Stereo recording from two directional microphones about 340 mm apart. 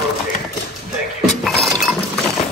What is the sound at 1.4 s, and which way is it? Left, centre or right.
Chink, centre.